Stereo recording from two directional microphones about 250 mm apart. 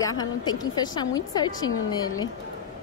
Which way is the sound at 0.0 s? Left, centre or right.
Centre.